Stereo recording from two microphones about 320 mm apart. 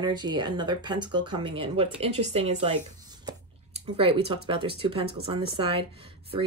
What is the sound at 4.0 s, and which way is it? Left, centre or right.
Speech, centre.